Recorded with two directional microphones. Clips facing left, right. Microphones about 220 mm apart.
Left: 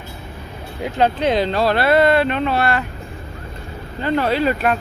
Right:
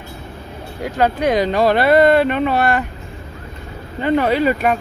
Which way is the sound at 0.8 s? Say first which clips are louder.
Right 1 dB; 10° right (ahead or behind).